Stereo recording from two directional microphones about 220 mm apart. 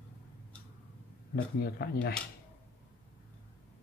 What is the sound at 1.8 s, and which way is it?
Speech, 45° left (ahead or behind).